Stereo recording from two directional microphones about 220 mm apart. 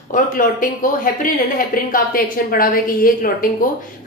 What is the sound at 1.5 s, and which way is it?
A woman's voice, 40° left (ahead or behind).